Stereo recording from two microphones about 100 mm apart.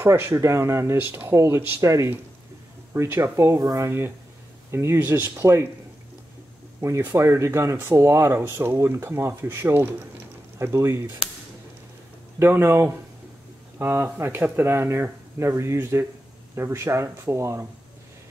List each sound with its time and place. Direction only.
0.0 s speech: 25° right (ahead or behind)
6.8 s speech: 25° right (ahead or behind)
12.4 s speech: 25° right (ahead or behind)